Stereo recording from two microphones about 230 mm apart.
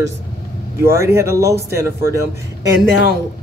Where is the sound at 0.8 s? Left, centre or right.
Centre.